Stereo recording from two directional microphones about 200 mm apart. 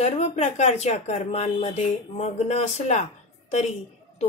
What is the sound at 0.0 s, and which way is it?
Speech, 35° left (ahead or behind).